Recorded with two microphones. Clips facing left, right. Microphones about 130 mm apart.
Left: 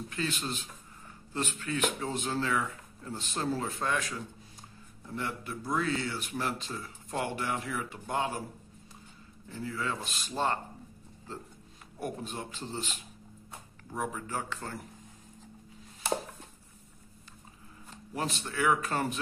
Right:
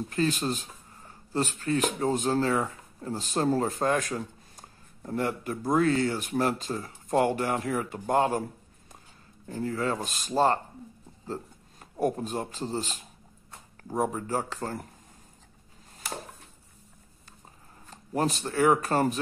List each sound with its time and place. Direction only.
0.1 s speech: 40° right (ahead or behind)
9.5 s speech: 45° right (ahead or behind)
12.0 s speech: 40° right (ahead or behind)
18.1 s speech: 40° right (ahead or behind)